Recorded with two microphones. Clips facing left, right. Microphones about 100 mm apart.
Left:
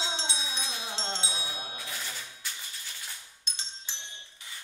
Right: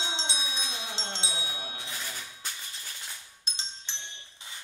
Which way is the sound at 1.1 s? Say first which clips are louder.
Left 1 dB; 20° right (ahead or behind).